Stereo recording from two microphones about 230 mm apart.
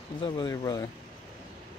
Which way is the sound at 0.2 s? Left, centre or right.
Centre.